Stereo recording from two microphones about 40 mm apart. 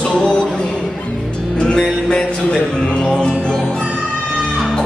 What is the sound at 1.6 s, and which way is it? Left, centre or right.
Music, left.